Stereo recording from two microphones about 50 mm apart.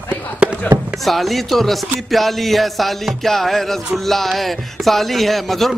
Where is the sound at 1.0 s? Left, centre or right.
Centre.